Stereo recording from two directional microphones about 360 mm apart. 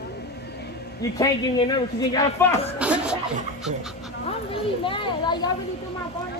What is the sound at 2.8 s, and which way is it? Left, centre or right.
Chuckle, centre.